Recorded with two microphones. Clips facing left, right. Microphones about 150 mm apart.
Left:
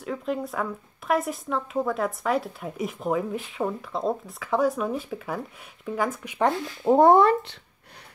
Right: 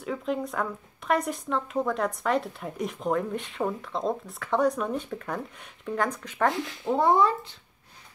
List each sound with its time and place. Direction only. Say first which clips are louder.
0.0 s speech: left 1 dB; centre (ahead or behind)
6.8 s speech: left 6 dB; 45° left (ahead or behind); by 7.5 s 65° left (ahead or behind)